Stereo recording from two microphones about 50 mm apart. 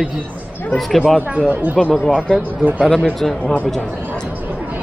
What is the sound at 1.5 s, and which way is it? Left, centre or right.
Speech, right.